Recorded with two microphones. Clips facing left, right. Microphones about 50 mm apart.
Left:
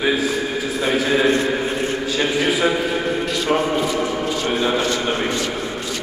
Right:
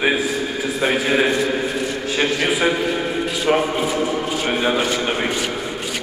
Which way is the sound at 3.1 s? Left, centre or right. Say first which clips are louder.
Left 1 dB; centre.